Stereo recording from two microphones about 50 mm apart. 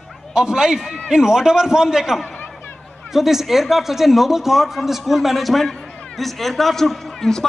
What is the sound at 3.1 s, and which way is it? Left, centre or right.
Speech, centre.